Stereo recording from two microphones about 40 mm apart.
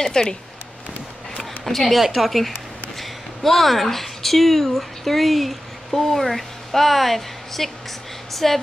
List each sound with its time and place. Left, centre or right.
0.0 s speech: centre
1.6 s a woman's voice: centre